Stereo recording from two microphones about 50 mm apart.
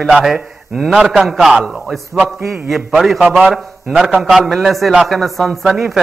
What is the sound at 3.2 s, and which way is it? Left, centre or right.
Speech, right.